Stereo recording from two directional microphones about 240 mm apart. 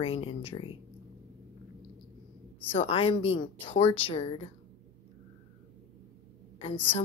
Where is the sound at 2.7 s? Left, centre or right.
Left.